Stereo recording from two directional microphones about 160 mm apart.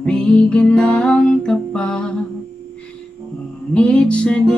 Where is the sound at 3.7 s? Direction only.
5° left (ahead or behind).